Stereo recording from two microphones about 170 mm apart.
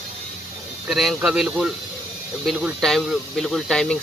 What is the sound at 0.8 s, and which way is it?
Speech, centre (ahead or behind).